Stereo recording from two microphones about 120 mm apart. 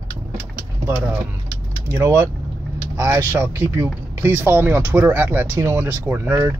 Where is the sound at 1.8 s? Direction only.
20° right (ahead or behind).